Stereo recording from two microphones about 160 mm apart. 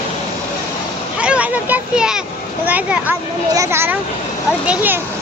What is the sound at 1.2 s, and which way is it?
A child's voice, 10° right (ahead or behind).